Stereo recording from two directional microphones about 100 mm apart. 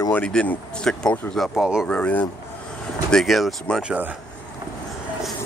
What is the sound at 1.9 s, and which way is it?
Speech, 15° left (ahead or behind).